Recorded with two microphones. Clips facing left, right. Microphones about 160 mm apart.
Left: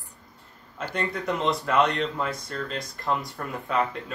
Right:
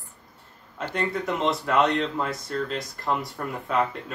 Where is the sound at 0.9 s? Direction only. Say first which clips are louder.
Right 1 dB; centre (ahead or behind).